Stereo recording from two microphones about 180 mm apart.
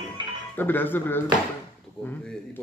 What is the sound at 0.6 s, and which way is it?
Speech, 10° left (ahead or behind).